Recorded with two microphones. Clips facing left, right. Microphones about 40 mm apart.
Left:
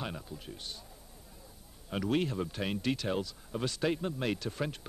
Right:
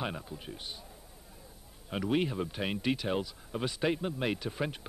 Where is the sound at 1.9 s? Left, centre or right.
Centre.